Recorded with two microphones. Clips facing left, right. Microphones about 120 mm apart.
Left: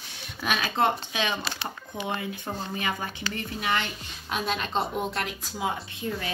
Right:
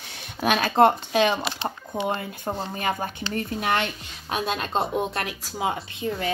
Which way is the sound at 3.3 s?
45° right (ahead or behind).